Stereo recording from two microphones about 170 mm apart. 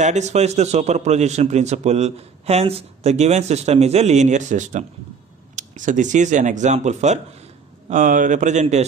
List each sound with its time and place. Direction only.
0.0 s a man's voice: 45° right (ahead or behind)